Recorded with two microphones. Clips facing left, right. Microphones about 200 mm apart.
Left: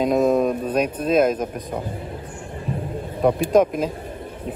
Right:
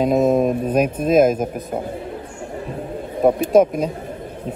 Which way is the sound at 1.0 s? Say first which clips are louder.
Right 4 dB; 45° right (ahead or behind).